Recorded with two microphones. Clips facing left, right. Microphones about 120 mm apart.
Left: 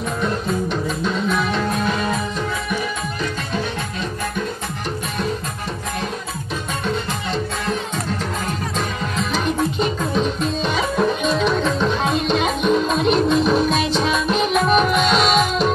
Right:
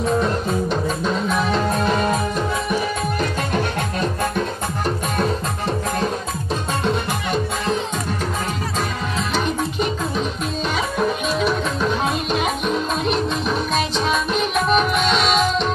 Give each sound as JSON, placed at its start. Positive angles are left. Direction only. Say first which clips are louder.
{"t": 0.7, "sound": "music", "louder": "right 1 dB", "side_deg": -40}
{"t": 9.1, "sound": "music", "louder": "left 1 dB", "side_deg": 0}